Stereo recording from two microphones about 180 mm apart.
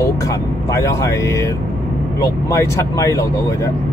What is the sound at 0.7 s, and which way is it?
Speech, 15° left (ahead or behind).